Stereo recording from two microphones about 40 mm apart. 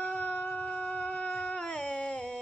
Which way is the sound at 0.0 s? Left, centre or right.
Left.